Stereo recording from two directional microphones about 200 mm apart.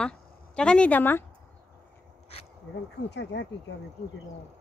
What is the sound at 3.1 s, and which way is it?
Speech, 60° left (ahead or behind).